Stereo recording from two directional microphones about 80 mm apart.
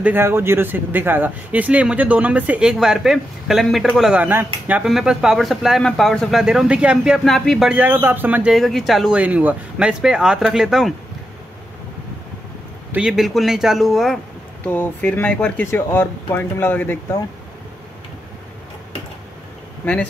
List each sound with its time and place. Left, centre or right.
0.0 s speech: right
2.7 s speech: centre
4.1 s speech: right
4.8 s speech: centre
6.4 s speech: centre
7.2 s speech: centre
7.7 s speech: right
8.5 s speech: centre
9.1 s speech: centre
13.1 s speech: centre
14.6 s speech: left
15.6 s speech: left
19.8 s speech: centre